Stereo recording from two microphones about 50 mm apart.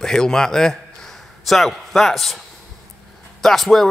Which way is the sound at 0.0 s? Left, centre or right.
Centre.